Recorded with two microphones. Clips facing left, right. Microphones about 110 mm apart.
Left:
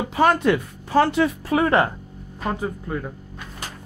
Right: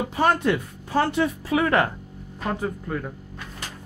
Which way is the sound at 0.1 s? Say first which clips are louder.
Left 4 dB; 90° left.